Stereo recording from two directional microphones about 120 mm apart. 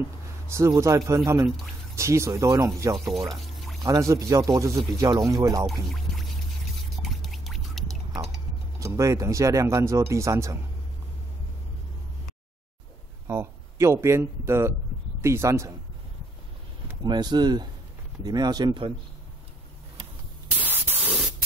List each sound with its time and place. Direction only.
0.5 s speech: 25° right (ahead or behind)
3.3 s pour: centre (ahead or behind)
3.8 s speech: 30° right (ahead or behind)
7.0 s a sound: centre (ahead or behind)
8.7 s speech: 25° right (ahead or behind)
13.3 s speech: 20° right (ahead or behind)
17.0 s speech: 35° right (ahead or behind)
20.5 s spray: 15° right (ahead or behind)